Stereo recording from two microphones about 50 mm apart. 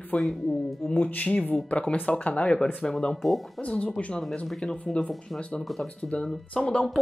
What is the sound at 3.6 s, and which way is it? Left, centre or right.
Speech, left.